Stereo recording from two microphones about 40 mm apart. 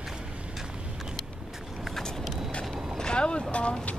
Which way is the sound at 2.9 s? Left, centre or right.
Left.